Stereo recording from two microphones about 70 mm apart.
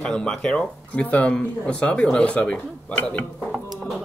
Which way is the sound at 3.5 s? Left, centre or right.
Centre.